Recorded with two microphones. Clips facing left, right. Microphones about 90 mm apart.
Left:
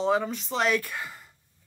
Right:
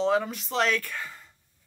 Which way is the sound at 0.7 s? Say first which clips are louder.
Left 2 dB; 15° left (ahead or behind).